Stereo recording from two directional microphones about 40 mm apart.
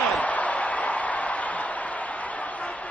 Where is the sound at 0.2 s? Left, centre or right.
Left.